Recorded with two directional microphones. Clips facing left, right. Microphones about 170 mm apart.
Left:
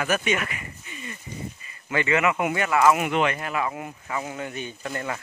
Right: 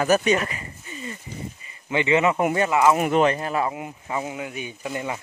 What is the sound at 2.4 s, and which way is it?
Speech, 40° right (ahead or behind).